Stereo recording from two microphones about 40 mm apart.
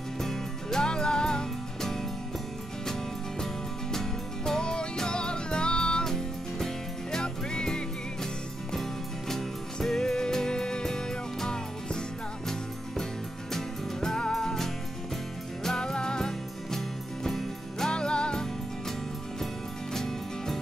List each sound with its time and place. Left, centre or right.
0.2 s music: centre
3.9 s music: centre
6.0 s music: centre
9.3 s music: centre
13.5 s music: centre
17.8 s music: left
19.9 s music: centre